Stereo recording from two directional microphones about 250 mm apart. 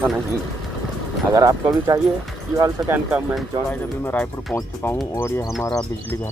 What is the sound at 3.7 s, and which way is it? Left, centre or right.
Speech, centre.